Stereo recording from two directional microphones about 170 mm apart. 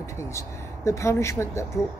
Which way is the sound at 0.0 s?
15° left (ahead or behind).